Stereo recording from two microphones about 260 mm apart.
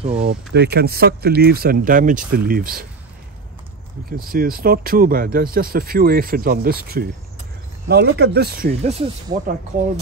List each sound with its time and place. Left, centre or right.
0.2 s speech: right
4.3 s speech: right
8.8 s speech: right